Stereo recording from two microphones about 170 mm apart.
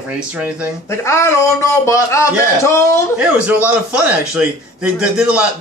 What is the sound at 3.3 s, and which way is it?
A man's voice, 10° right (ahead or behind).